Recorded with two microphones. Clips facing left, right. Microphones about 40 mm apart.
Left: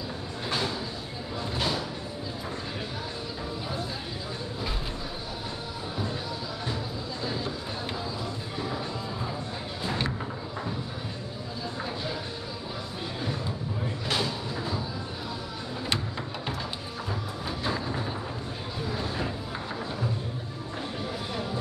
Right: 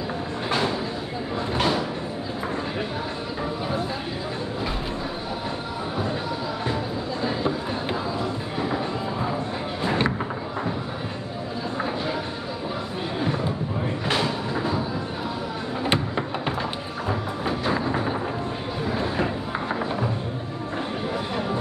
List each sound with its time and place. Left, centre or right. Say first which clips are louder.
0.5 s train: right 6 dB; right
1.6 s a sound: right 7 dB; right
7.2 s music: right 8 dB; right
9.8 s music: right 7 dB; right
13.2 s a sound: right 8 dB; right
15.9 s music: right 7 dB; right